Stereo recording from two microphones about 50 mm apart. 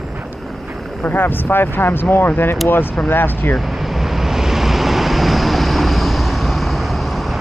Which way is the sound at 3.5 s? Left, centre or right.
Centre.